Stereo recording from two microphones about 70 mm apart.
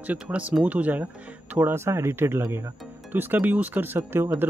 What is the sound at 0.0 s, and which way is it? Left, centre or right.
A man's voice, right.